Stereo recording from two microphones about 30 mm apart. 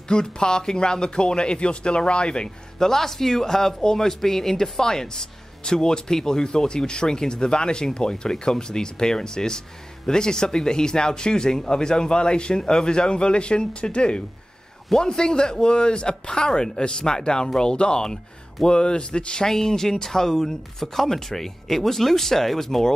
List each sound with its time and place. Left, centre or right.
0.1 s speech: left
2.8 s speech: centre; by 19.4 s left
19.4 s speech: centre